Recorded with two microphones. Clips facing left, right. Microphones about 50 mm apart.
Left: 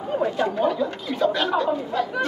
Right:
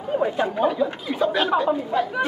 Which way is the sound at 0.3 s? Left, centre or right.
Centre.